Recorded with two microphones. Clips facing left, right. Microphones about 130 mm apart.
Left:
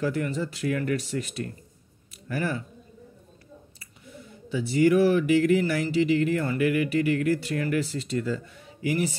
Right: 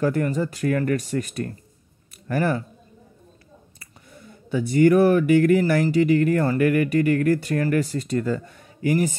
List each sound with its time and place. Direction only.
0.0 s speech: 45° right (ahead or behind)
4.1 s speech: 50° right (ahead or behind)